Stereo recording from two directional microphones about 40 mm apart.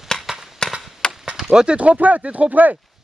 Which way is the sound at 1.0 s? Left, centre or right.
Left.